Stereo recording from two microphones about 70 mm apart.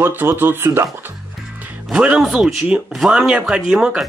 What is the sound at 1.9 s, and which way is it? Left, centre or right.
Speech, centre.